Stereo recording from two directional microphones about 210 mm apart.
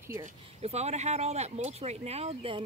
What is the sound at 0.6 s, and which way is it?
Speech, 30° right (ahead or behind).